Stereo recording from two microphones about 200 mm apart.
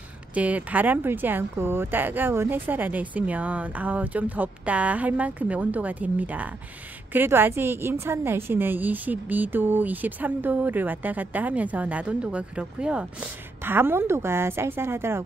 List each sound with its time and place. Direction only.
0.3 s a woman's voice: 5° right (ahead or behind)